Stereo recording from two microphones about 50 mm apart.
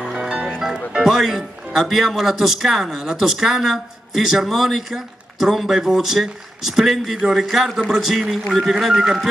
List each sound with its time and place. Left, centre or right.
0.0 s music: centre
0.9 s a man's voice: centre